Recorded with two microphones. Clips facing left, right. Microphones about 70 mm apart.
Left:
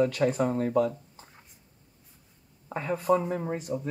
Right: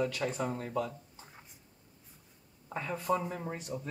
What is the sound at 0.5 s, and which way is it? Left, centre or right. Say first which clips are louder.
Speech: left 10 dB; left.